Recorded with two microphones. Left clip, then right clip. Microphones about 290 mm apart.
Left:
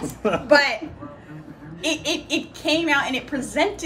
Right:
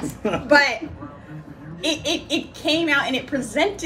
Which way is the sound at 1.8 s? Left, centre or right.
Centre.